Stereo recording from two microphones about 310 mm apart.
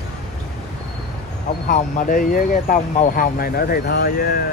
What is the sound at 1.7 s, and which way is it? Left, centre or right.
Speech, left.